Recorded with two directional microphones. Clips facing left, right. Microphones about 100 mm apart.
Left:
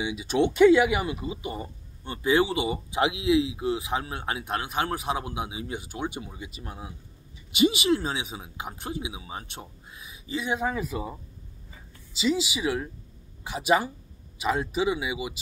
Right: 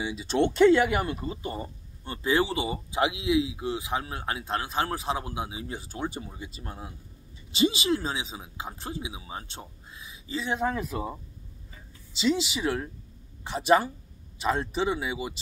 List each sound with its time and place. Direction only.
0.0 s speech: 10° left (ahead or behind)